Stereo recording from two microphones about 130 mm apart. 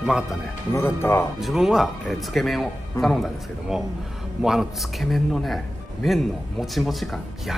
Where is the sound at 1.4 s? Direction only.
Centre (ahead or behind).